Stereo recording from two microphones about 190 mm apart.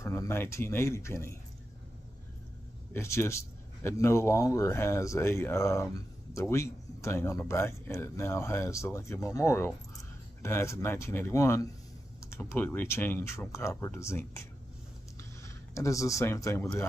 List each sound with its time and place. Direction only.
0.0 s speech: 15° left (ahead or behind)
2.9 s speech: 15° left (ahead or behind)